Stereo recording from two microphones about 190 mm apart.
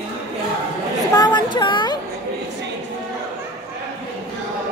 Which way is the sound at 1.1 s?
20° left (ahead or behind).